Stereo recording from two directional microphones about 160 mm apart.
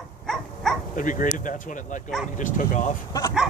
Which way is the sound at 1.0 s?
55° left (ahead or behind).